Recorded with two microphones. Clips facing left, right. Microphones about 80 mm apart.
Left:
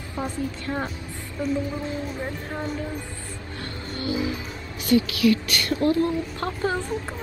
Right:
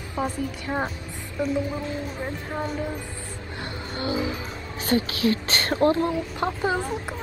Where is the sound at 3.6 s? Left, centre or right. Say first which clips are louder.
Right 1 dB; right.